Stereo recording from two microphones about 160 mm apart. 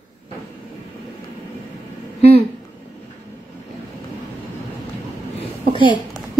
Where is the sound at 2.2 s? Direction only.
40° left (ahead or behind).